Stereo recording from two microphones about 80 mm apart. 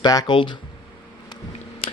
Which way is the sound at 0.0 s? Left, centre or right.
Left.